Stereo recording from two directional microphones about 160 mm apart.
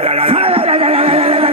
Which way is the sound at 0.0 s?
35° right (ahead or behind).